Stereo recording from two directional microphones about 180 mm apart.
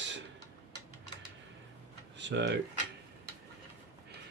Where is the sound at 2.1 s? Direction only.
80° right.